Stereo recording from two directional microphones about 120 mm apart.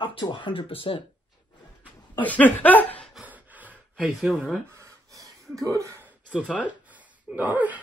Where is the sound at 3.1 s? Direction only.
10° right (ahead or behind).